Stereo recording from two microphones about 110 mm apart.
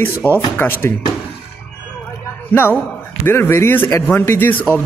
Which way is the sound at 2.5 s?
20° left (ahead or behind).